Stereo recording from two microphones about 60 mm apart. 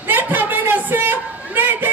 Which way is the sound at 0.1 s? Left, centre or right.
Right.